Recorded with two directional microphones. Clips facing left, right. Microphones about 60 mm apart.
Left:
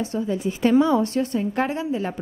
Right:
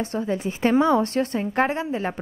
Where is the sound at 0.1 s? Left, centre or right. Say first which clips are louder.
Left 1 dB; right.